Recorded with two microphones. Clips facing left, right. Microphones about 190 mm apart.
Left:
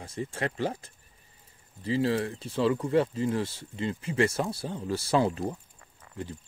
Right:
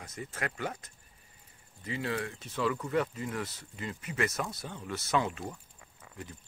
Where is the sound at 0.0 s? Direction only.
30° left (ahead or behind).